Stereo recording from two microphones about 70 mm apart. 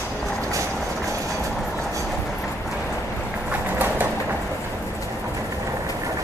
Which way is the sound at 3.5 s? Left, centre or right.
Right.